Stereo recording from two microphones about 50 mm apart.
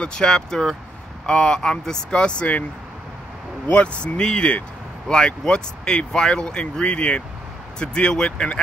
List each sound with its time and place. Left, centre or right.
0.0 s speech: centre
3.7 s speech: left
5.0 s speech: centre